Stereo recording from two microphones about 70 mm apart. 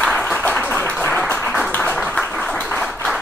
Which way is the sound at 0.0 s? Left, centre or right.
Centre.